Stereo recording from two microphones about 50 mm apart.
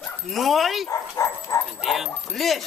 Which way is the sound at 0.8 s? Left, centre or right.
Left.